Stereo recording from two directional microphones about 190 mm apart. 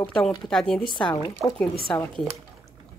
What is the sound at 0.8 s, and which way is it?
Speech, 25° left (ahead or behind).